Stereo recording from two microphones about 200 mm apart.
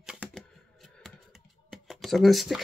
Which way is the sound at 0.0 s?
5° right (ahead or behind).